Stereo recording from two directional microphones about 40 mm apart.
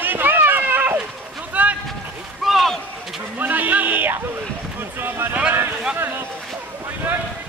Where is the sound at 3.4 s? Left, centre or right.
Right.